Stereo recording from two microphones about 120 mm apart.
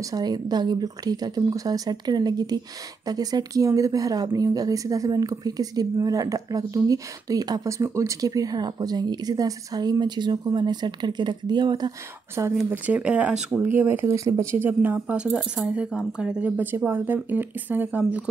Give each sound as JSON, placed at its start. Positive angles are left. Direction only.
{"t": 0.0, "sound": "speech", "side_deg": -35}
{"t": 12.6, "sound": "speech", "side_deg": -15}